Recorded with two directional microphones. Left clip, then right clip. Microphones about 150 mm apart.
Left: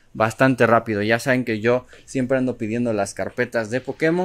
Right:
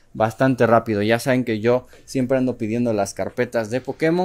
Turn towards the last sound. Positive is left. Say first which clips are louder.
# even
turn(degrees=-5)  # may be behind; listen again after turning